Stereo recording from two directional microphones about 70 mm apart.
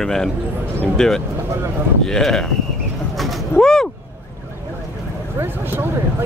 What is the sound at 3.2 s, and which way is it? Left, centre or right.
Bird, centre.